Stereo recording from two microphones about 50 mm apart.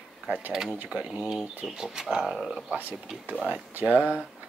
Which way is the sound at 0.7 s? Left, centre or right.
Right.